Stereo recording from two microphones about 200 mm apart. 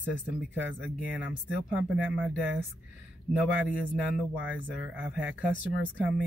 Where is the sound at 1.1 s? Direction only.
5° right (ahead or behind).